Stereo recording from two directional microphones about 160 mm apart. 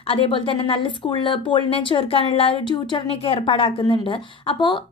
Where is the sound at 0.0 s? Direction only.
35° left (ahead or behind).